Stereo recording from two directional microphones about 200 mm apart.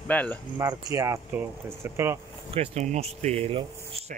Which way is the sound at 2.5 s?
30° right (ahead or behind).